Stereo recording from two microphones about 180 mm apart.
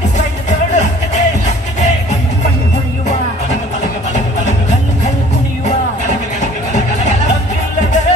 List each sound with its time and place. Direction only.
0.5 s music: 40° left (ahead or behind)